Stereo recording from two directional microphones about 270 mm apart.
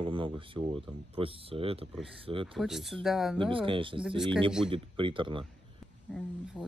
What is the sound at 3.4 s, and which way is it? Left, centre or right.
Speech, centre.